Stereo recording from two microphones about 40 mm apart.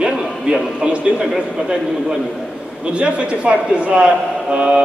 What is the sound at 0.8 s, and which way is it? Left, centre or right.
Speech, right.